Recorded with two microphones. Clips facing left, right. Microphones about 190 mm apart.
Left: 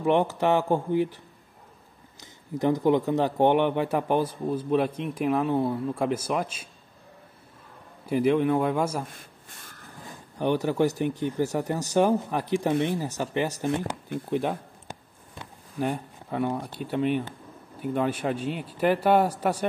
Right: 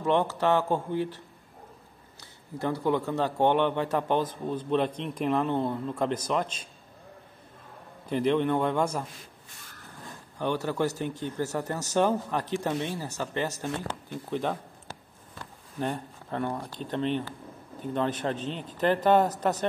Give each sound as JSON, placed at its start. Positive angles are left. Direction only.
{"t": 0.0, "sound": "a man's voice", "side_deg": 15}
{"t": 8.1, "sound": "a man's voice", "side_deg": 5}
{"t": 9.1, "sound": "a sound", "side_deg": 50}
{"t": 10.4, "sound": "a man's voice", "side_deg": 15}
{"t": 14.3, "sound": "a sound", "side_deg": 10}
{"t": 17.7, "sound": "a man's voice", "side_deg": 10}